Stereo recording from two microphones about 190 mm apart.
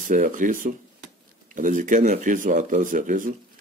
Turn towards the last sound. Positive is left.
turn(degrees=-45)  # may be behind; listen again after turning